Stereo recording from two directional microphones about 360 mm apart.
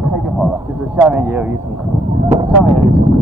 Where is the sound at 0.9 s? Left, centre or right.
Centre.